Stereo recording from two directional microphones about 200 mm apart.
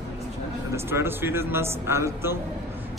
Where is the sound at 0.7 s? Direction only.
10° right (ahead or behind).